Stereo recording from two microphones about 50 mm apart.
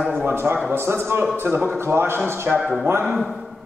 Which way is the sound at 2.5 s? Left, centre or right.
Right.